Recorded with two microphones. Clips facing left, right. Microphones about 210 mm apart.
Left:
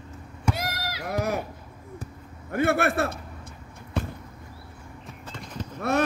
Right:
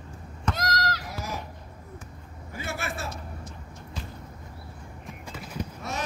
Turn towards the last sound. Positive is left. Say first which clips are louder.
# right 1 dB
turn(degrees=-5)  # may be behind; listen again after turning